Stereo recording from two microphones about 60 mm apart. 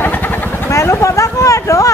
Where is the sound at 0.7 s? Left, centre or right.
Left.